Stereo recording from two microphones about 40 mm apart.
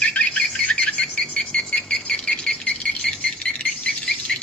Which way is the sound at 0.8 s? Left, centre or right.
Left.